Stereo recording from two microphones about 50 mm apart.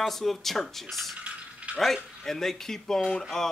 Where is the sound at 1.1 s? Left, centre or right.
Right.